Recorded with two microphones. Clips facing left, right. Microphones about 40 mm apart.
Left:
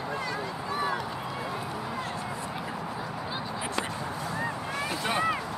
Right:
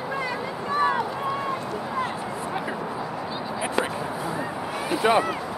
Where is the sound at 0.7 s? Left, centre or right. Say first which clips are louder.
Right 8 dB; right.